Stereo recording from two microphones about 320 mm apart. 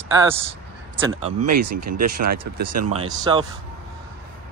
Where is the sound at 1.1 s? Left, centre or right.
Right.